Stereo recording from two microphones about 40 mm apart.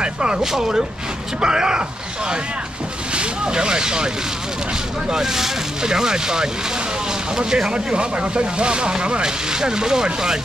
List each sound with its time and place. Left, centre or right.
0.0 s speech: right
5.1 s speech: centre